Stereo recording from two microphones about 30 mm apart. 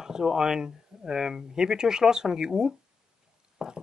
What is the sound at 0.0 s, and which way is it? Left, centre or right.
Speech, right.